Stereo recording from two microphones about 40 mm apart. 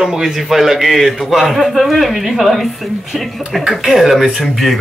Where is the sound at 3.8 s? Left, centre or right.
Centre.